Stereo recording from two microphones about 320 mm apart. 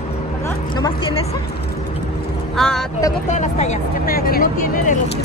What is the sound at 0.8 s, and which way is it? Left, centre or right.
Speech, centre.